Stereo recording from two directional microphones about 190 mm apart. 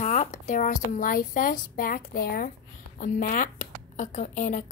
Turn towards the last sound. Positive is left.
turn(degrees=45)  # may be behind; listen again after turning